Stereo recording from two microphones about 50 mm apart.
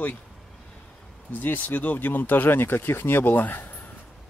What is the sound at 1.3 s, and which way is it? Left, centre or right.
Speech, left.